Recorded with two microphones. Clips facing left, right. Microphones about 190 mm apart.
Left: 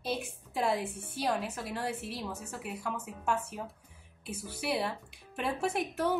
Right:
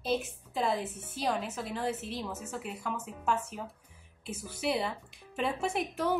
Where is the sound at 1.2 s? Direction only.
Centre (ahead or behind).